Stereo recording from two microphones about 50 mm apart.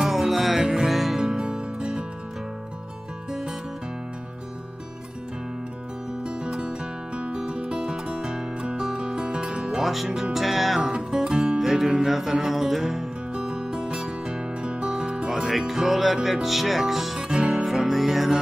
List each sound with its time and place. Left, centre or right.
0.0 s music: centre
3.3 s music: centre
6.2 s music: centre